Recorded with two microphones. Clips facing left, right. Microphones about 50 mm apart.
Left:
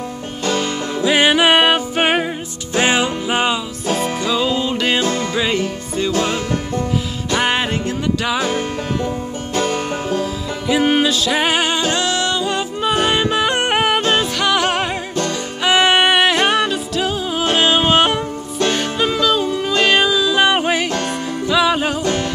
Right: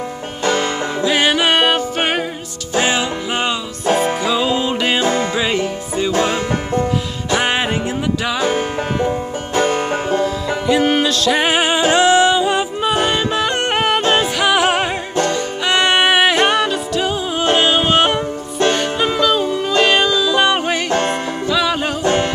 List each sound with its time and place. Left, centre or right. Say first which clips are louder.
1.0 s music: left 2 dB; centre
2.7 s music: left 1 dB; left
3.8 s music: right 5 dB; centre
5.0 s music: right 3 dB; right
5.3 s music: right 1 dB; centre
8.4 s music: right 2 dB; centre
10.0 s music: right 3 dB; centre
12.8 s music: left 1 dB; centre
13.1 s music: left 1 dB; centre
14.4 s music: right 2 dB; centre
15.6 s music: left 1 dB; centre
22.0 s music: right 3 dB; right